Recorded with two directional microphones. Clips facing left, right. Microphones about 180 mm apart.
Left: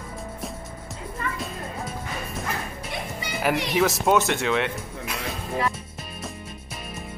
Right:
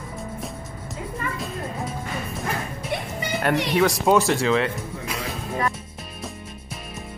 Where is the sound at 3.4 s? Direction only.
5° left (ahead or behind).